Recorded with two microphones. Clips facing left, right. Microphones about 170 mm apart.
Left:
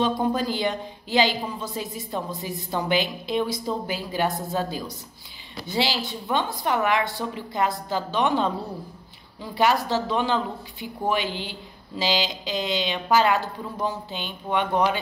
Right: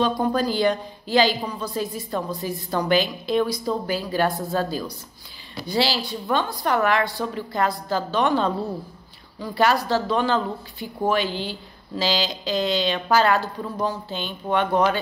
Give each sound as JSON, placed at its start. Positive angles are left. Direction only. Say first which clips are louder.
{"t": 0.0, "sound": "a woman's voice", "louder": "right 2 dB", "side_deg": 20}